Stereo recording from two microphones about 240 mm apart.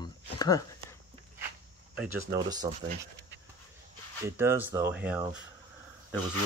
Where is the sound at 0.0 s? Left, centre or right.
Centre.